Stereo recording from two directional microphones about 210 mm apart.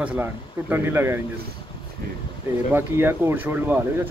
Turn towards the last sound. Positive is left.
turn(degrees=-10)  # may be behind; listen again after turning